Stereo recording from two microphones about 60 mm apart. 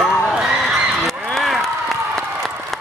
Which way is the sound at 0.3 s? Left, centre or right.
Centre.